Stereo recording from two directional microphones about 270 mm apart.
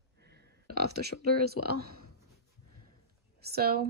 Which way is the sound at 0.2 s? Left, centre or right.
Right.